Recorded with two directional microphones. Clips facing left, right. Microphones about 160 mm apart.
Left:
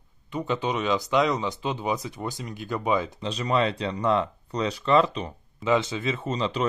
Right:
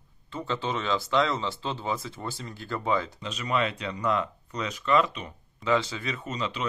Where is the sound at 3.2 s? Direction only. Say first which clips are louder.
Left 4 dB; 35° left (ahead or behind).